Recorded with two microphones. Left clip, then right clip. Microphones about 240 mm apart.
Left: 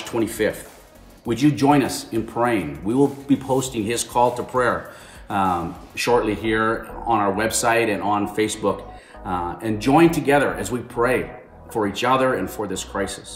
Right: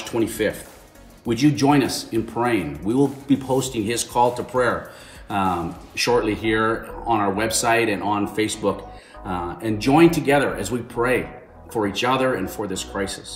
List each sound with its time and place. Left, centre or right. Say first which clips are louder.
0.1 s speech: even; centre